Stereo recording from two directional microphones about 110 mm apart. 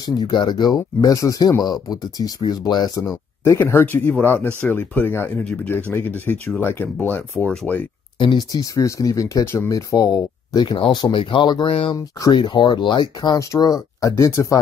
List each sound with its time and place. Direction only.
0.0 s speech: 40° left (ahead or behind)
3.4 s speech: 25° left (ahead or behind)
8.2 s speech: 40° left (ahead or behind)
12.2 s speech: 40° left (ahead or behind)